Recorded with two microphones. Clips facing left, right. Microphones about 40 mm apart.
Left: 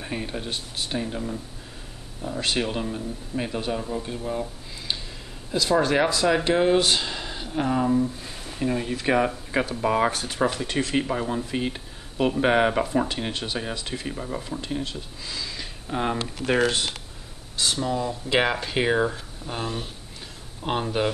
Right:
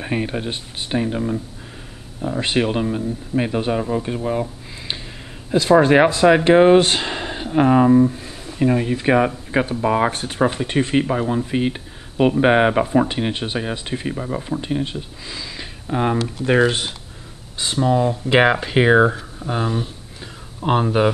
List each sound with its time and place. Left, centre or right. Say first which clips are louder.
0.0 s speech: right 8 dB; right
8.5 s speech: right 8 dB; right
10.1 s speech: right 5 dB; right
16.4 s speech: right 5 dB; right
19.6 s speech: right 7 dB; centre
20.6 s speech: right 8 dB; centre